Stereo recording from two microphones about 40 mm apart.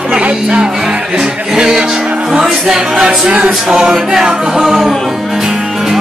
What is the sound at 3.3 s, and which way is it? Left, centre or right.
Music, right.